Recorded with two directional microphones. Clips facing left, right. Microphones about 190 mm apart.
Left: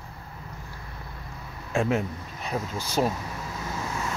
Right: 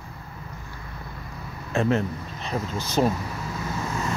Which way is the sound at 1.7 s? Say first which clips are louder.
Right 2 dB; 10° left (ahead or behind).